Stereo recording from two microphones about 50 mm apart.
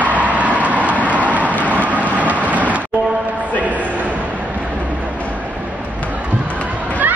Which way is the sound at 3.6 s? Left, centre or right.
Right.